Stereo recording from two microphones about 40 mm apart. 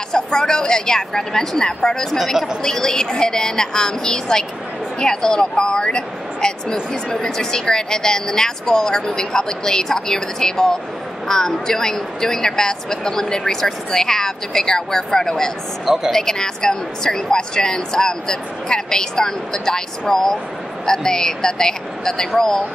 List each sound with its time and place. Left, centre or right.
0.1 s a woman's voice: centre
2.1 s a woman's voice: centre
2.6 s a woman's voice: centre
15.8 s speech: centre
16.1 s a woman's voice: centre